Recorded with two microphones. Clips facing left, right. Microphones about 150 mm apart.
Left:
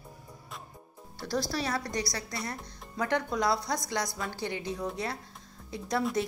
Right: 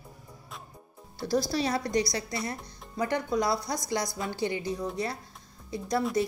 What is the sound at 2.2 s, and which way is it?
Speech, 10° right (ahead or behind).